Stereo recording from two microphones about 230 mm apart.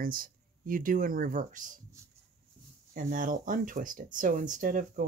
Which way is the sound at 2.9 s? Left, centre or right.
Right.